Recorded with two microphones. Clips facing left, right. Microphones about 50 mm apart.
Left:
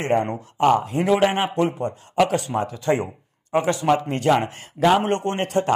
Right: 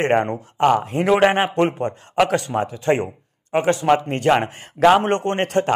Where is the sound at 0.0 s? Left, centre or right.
Right.